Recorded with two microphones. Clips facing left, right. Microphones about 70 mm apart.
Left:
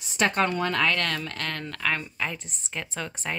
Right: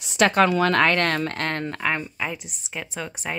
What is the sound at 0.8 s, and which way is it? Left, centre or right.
Speech, right.